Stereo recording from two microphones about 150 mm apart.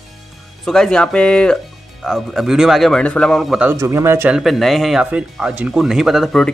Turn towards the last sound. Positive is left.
turn(degrees=0)  # may be behind; listen again after turning